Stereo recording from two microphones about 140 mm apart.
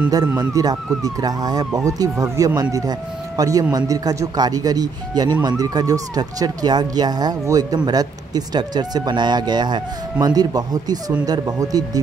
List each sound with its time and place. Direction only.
0.4 s speech: 25° right (ahead or behind)